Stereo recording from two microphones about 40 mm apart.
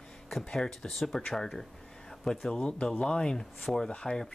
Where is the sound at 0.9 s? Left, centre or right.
Centre.